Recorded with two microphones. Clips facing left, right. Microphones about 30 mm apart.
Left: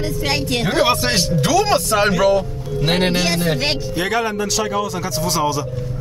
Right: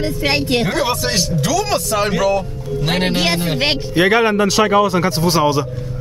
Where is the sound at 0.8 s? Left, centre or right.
Left; by 3.1 s centre.